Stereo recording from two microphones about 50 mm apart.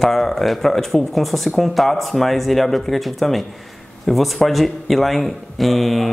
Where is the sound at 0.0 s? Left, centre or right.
Centre.